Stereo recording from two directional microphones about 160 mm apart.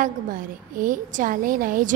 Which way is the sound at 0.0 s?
55° right (ahead or behind).